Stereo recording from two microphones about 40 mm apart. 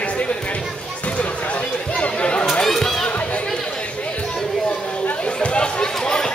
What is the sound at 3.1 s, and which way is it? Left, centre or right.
Chatter, left.